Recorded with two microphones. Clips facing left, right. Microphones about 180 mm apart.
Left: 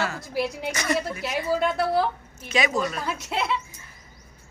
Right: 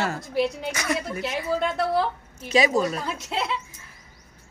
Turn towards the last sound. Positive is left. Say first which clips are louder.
# left 1 dB
turn(degrees=5)  # may be behind; listen again after turning